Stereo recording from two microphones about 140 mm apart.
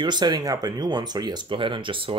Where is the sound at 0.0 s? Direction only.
30° right (ahead or behind).